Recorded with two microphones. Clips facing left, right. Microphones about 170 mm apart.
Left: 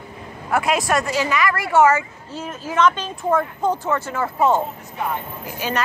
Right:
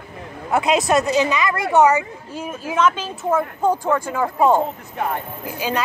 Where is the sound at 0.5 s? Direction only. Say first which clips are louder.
Right 2 dB; 20° right (ahead or behind).